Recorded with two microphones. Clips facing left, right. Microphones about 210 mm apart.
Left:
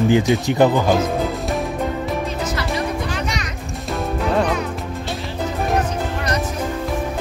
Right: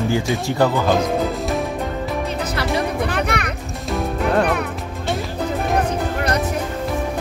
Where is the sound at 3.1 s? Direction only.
60° right (ahead or behind).